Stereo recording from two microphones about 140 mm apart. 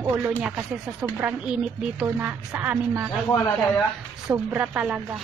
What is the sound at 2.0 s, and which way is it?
Speech, 10° right (ahead or behind).